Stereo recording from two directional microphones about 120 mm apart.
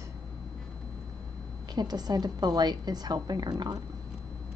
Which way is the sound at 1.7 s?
35° right (ahead or behind).